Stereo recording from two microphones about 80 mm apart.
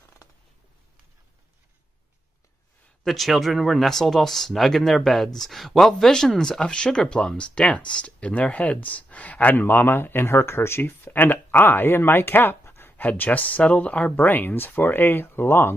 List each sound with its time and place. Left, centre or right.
3.0 s speech: centre; by 15.7 s left